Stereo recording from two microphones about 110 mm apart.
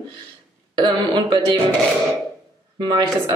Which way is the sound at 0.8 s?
40° right (ahead or behind).